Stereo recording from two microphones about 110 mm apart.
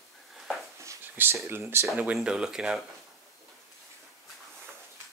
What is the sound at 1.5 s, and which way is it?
Speech, 20° right (ahead or behind).